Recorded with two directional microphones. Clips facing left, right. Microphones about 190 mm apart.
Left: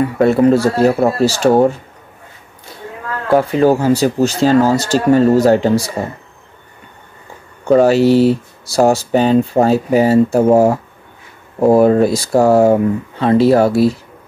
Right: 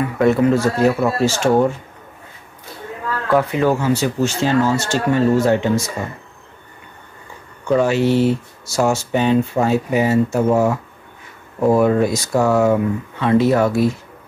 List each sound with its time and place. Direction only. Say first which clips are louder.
0.2 s speech: left 3 dB; 35° left (ahead or behind)
3.3 s speech: left 5 dB; 30° left (ahead or behind)
7.6 s speech: left 6 dB; 35° left (ahead or behind)